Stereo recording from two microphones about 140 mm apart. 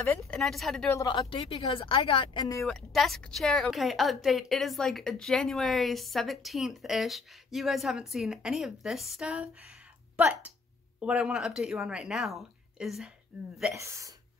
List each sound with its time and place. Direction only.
0.3 s a woman's voice: centre (ahead or behind)
0.9 s speech: 30° left (ahead or behind)
2.6 s a woman's voice: centre (ahead or behind)
13.7 s speech: 20° right (ahead or behind)